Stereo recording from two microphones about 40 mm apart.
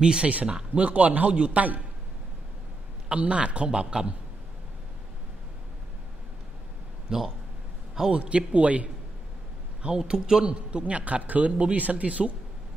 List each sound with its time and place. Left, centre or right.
0.0 s a man's voice: centre; by 1.8 s right
3.1 s a man's voice: right
3.7 s a man's voice: right
7.1 s a man's voice: centre
8.2 s a man's voice: right
9.9 s a man's voice: centre
10.4 s a man's voice: right